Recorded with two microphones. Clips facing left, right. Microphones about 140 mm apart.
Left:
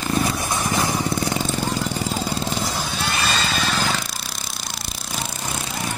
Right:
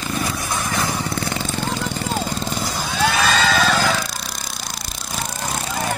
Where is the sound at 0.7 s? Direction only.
15° left (ahead or behind).